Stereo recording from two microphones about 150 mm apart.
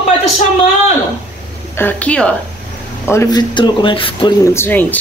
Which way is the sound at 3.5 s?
30° left (ahead or behind).